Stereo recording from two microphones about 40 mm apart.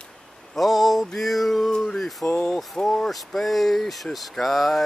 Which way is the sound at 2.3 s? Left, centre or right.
Centre.